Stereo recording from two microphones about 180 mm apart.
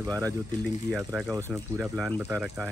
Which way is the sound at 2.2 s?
10° right (ahead or behind).